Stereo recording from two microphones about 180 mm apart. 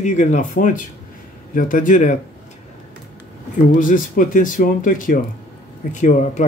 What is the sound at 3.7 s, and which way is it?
Speech, 50° left (ahead or behind).